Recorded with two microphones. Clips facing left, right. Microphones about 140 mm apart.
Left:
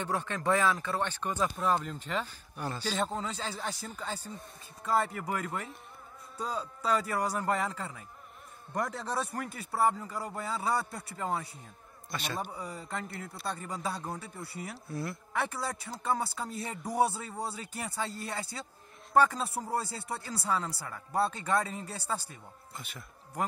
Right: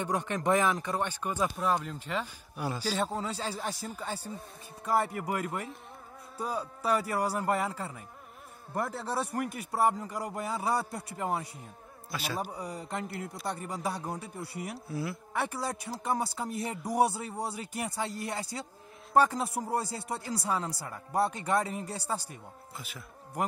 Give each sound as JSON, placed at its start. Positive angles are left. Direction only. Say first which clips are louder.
{"t": 0.0, "sound": "a man's voice", "louder": "right 2 dB", "side_deg": -15}
{"t": 12.5, "sound": "speech", "louder": "right 2 dB", "side_deg": -15}
{"t": 14.9, "sound": "speech", "louder": "left 1 dB", "side_deg": -5}
{"t": 22.8, "sound": "a man's voice", "louder": "even", "side_deg": 0}